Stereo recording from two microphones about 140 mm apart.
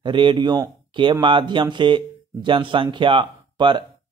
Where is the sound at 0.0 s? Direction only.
35° right (ahead or behind).